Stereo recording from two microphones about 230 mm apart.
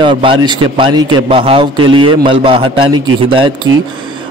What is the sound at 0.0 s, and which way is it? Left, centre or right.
A man's voice, right.